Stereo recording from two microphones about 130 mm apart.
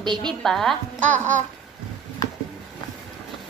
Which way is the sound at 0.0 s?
35° right (ahead or behind).